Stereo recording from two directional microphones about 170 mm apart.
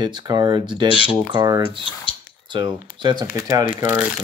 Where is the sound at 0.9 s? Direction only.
30° left (ahead or behind).